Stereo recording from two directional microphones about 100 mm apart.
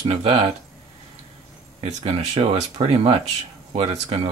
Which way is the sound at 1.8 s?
90° right.